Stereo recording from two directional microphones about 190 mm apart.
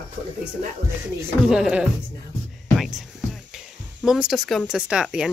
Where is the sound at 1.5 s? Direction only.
5° right (ahead or behind).